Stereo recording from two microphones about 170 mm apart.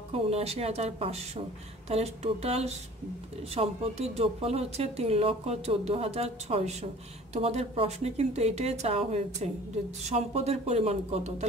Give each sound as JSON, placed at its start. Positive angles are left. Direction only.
{"t": 0.3, "sound": "speech", "side_deg": -35}